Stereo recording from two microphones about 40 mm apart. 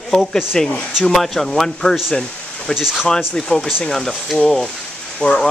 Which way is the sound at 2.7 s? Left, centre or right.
Centre.